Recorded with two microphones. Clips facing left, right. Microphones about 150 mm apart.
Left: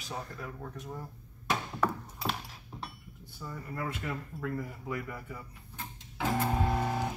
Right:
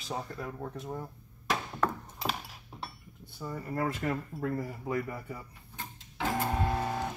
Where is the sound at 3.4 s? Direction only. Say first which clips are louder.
Right 5 dB; 30° right (ahead or behind).